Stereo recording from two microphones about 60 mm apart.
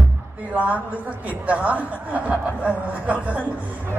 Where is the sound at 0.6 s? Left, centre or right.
Right.